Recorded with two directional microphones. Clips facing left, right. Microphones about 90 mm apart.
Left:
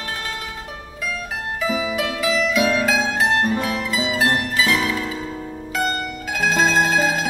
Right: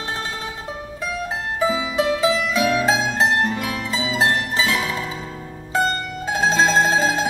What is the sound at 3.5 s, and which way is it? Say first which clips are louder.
Music: left 3 dB; 30° left (ahead or behind).